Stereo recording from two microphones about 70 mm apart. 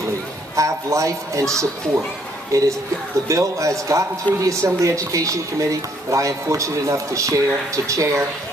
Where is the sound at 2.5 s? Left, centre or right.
Right.